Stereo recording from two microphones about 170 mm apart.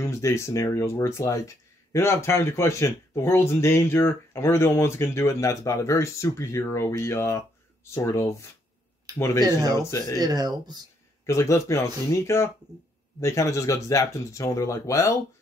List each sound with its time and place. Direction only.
0.0 s speech: 15° left (ahead or behind)
9.8 s speech: 20° left (ahead or behind)
10.1 s speech: 20° right (ahead or behind)
11.2 s speech: 15° left (ahead or behind)